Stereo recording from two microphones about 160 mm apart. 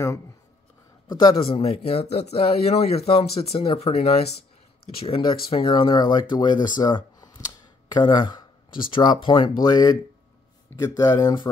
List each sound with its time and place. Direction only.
1.0 s speech: 30° left (ahead or behind)